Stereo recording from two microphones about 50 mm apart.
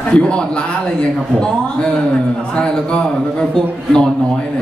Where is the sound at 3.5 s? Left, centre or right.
Centre.